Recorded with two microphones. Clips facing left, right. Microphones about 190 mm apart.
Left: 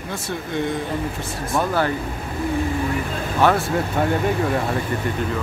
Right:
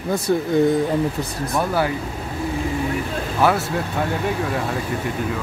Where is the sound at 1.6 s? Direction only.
10° right (ahead or behind).